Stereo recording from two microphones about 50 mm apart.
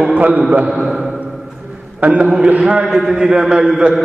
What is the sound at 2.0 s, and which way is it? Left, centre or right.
Speech, right.